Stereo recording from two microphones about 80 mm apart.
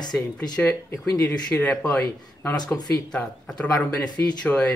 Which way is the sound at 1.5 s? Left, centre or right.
Centre.